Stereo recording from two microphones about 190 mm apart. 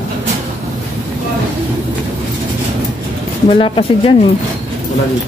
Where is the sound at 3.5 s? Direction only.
30° left (ahead or behind).